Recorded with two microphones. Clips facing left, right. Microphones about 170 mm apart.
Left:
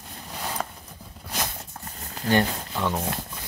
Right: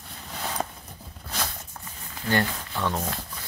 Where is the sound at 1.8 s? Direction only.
40° left (ahead or behind).